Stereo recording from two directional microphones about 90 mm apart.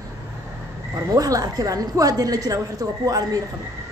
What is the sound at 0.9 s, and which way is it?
A woman's voice, 40° right (ahead or behind).